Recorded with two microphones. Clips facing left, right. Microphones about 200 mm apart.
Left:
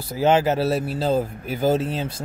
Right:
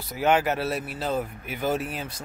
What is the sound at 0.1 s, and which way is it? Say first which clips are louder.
Speech: left 4 dB; 30° left (ahead or behind).